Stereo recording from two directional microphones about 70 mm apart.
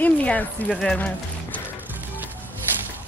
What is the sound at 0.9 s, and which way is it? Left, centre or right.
Music, left.